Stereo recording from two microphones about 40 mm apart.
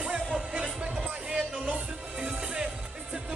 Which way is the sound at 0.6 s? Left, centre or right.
Centre.